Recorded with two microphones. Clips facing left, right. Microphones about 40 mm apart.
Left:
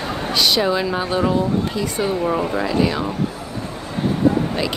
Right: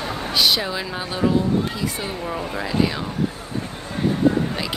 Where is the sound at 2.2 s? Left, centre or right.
Centre.